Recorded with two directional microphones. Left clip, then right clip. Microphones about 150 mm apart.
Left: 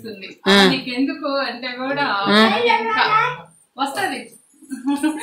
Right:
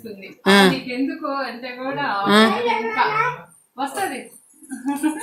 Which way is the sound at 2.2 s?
15° right (ahead or behind).